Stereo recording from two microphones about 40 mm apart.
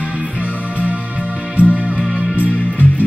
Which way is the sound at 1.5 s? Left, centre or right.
Right.